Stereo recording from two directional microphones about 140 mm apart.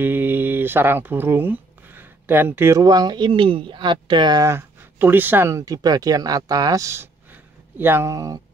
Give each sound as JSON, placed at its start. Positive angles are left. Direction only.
{"t": 0.0, "sound": "speech", "side_deg": -15}
{"t": 2.8, "sound": "speech", "side_deg": -30}